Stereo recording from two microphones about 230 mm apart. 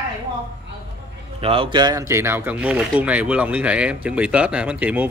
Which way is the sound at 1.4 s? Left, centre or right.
Right.